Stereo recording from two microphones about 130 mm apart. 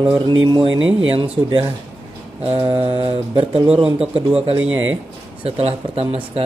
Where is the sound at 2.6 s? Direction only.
45° right (ahead or behind).